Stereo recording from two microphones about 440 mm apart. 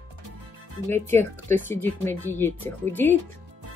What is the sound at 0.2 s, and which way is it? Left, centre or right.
Music, right.